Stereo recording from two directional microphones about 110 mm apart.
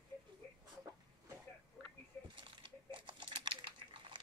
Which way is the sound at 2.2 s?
50° right (ahead or behind).